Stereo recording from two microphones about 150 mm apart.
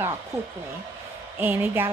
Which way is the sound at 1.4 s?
15° right (ahead or behind).